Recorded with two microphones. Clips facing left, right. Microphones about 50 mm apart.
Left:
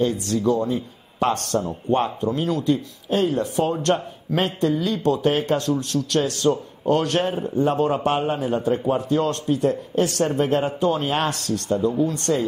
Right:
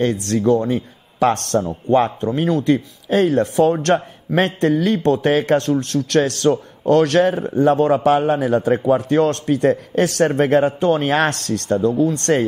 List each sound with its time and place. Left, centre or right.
0.0 s speech: right
0.7 s a man's voice: right
1.9 s a man's voice: right
2.6 s a man's voice: right
5.3 s a man's voice: right
5.7 s a man's voice: right
10.8 s speech: right